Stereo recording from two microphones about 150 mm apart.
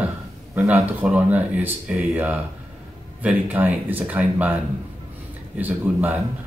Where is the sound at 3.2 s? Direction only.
10° right (ahead or behind).